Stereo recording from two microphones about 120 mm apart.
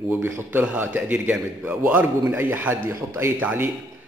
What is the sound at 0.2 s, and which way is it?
A man's voice, 15° right (ahead or behind).